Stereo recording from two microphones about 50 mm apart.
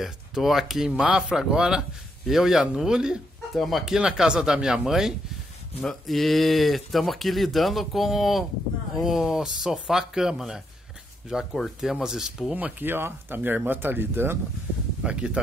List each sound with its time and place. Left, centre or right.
0.0 s speech: centre
3.5 s speech: centre
5.8 s speech: centre
12.5 s speech: right
12.8 s speech: right
15.0 s speech: right